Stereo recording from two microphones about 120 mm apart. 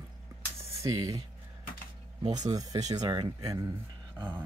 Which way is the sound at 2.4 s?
35° right (ahead or behind).